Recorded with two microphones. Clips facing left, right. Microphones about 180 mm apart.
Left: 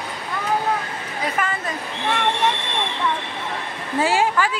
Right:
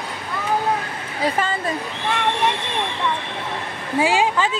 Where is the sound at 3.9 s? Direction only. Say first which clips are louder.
Right 1 dB; 15° right (ahead or behind).